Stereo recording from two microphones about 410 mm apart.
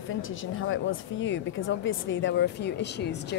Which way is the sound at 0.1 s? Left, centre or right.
Left.